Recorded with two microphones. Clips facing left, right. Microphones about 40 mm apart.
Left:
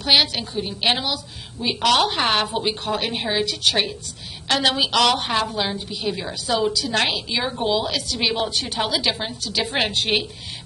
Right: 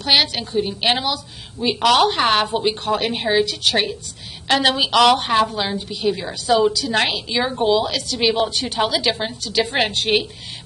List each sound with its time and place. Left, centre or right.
0.0 s a woman's voice: centre